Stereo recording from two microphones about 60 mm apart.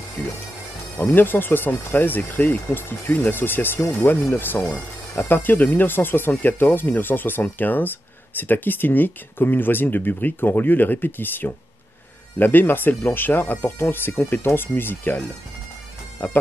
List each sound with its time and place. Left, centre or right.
0.2 s bagpipes: left
0.9 s speech: left
16.2 s speech: left